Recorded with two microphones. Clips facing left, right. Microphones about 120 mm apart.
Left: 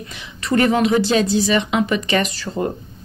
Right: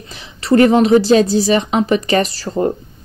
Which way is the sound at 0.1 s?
35° right (ahead or behind).